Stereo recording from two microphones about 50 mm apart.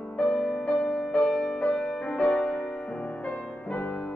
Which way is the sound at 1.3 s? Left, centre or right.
Centre.